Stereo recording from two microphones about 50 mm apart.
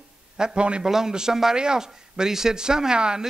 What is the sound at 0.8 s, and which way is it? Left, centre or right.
Speech, centre.